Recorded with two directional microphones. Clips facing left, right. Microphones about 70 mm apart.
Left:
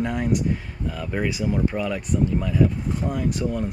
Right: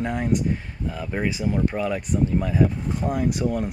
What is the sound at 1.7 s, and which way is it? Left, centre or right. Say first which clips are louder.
Speech: even; centre.